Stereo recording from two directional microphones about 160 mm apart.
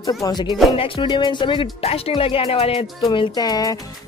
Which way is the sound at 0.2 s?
25° left (ahead or behind).